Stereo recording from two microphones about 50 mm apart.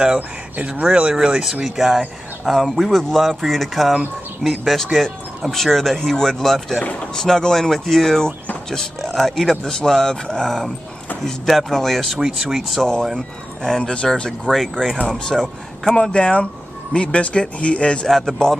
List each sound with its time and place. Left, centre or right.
0.6 s speech: right
1.1 s speech: centre
6.8 s speech: left
7.2 s speech: centre
12.2 s speech: centre
13.6 s speech: centre
14.5 s speech: centre; by 18.0 s left
18.0 s speech: centre